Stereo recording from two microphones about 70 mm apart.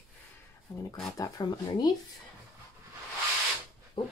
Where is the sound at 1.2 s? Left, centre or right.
Left.